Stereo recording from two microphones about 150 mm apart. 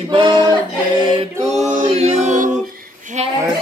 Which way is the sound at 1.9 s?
50° right (ahead or behind).